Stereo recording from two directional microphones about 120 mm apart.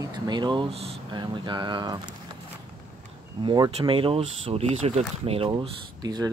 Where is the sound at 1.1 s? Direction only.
40° right (ahead or behind).